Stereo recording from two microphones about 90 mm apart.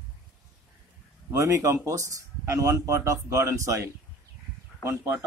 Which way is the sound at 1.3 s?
35° right (ahead or behind).